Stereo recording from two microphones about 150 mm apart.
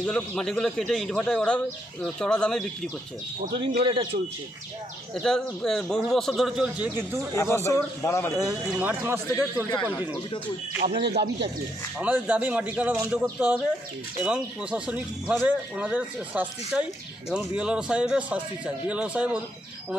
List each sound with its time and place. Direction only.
0.0 s speech: 5° left (ahead or behind)
3.5 s speech: 35° right (ahead or behind)
5.1 s speech: 5° left (ahead or behind); by 7.2 s 10° right (ahead or behind)
7.6 s speech: 20° left (ahead or behind)
8.7 s speech: 15° right (ahead or behind)
10.8 s speech: 80° right
12.0 s speech: 10° right (ahead or behind)